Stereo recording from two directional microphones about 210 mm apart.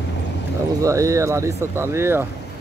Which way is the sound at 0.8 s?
15° right (ahead or behind).